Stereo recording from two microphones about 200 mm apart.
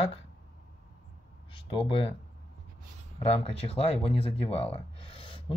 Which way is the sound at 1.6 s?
25° left (ahead or behind).